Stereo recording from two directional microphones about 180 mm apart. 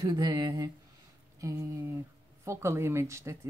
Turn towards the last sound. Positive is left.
turn(degrees=-15)  # may be behind; listen again after turning